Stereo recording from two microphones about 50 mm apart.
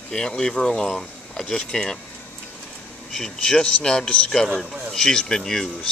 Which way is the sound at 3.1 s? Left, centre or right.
Centre.